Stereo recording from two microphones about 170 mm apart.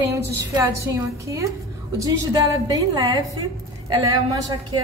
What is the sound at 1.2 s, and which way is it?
A woman's voice, 20° right (ahead or behind).